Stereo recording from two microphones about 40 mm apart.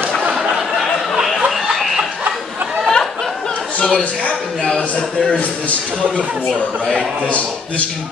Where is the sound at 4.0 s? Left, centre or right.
Left.